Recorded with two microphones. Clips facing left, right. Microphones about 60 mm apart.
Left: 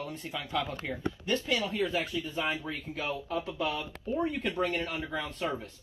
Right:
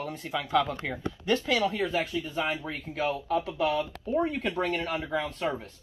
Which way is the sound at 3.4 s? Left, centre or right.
Right.